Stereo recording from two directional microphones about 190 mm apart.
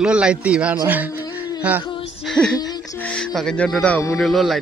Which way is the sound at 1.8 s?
25° left (ahead or behind).